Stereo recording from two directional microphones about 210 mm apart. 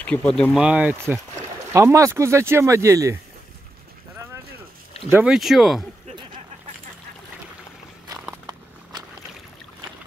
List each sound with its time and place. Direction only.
0.0 s speech: 5° left (ahead or behind); by 3.2 s 15° right (ahead or behind)
5.1 s speech: 5° right (ahead or behind)
8.1 s a sound: 15° right (ahead or behind)